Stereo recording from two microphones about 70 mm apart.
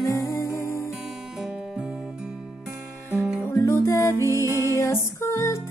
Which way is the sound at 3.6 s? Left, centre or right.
Left.